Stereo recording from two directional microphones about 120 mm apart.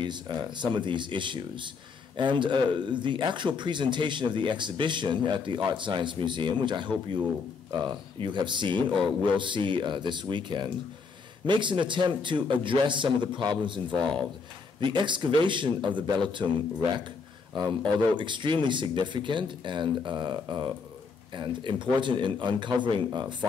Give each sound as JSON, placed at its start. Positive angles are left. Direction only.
{"t": 0.0, "sound": "speech", "side_deg": -40}